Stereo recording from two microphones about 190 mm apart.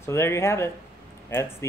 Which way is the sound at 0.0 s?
15° left (ahead or behind).